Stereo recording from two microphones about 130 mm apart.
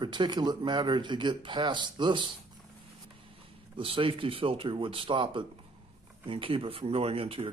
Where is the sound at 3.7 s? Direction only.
45° right (ahead or behind).